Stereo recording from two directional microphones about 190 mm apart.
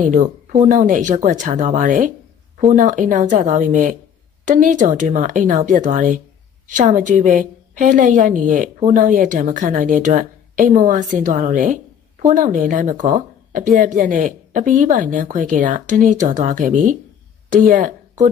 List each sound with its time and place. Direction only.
0.0 s a woman's voice: 40° right (ahead or behind)